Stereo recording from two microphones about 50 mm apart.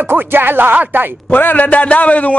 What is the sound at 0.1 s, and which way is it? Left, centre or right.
Speech, right.